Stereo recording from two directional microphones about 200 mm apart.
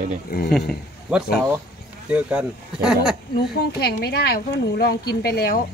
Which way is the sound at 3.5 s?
50° left (ahead or behind).